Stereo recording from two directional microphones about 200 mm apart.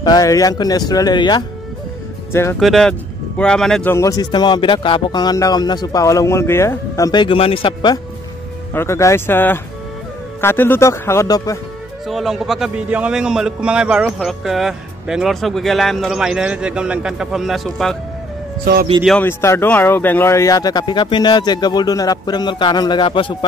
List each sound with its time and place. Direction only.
0.0 s speech: 20° left (ahead or behind)
2.6 s speech: centre (ahead or behind)
3.9 s speech: 15° left (ahead or behind)
8.7 s speech: 15° left (ahead or behind)
12.1 s a man's voice: centre (ahead or behind)
19.0 s speech: 10° left (ahead or behind); by 23.3 s 25° left (ahead or behind)